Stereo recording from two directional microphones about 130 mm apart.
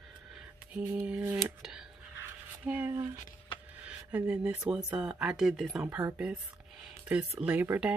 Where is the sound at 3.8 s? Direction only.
10° right (ahead or behind).